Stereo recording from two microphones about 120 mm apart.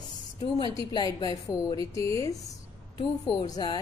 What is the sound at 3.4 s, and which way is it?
Speech, 35° left (ahead or behind).